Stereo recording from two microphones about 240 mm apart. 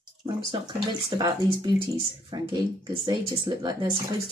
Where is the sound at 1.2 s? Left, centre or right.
Centre.